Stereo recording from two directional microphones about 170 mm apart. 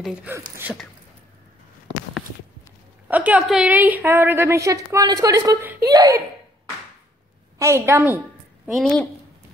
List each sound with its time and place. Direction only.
0.0 s a woman's voice: 5° right (ahead or behind)
3.1 s a woman's voice: 10° right (ahead or behind)
7.5 s a woman's voice: 15° right (ahead or behind)
8.6 s a woman's voice: centre (ahead or behind)